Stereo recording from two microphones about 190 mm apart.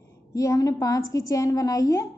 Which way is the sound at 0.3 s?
15° left (ahead or behind).